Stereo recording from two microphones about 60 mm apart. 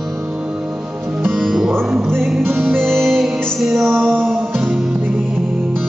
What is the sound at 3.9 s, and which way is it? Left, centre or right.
Music, centre.